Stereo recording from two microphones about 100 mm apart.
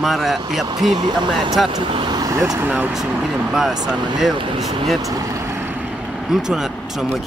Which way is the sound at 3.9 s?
45° right (ahead or behind).